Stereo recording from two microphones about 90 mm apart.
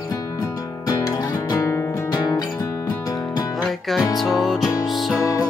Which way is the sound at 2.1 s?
50° left (ahead or behind).